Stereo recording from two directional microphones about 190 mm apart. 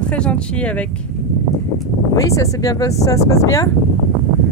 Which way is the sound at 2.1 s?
15° left (ahead or behind).